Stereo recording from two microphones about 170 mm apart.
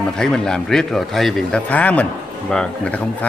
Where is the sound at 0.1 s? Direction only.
5° left (ahead or behind).